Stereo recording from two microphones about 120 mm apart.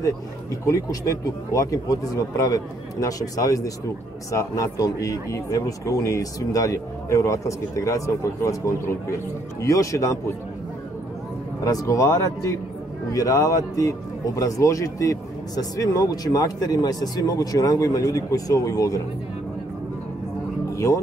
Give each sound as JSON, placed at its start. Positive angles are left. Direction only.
{"t": 0.7, "sound": "speech", "side_deg": 30}
{"t": 11.6, "sound": "speech", "side_deg": 30}
{"t": 20.7, "sound": "speech", "side_deg": 25}